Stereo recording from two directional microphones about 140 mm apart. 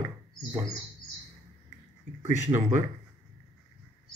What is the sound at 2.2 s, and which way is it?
Speech, 15° right (ahead or behind).